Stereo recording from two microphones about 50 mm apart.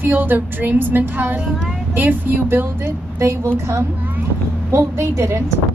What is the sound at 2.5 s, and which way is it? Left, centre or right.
Speech, right.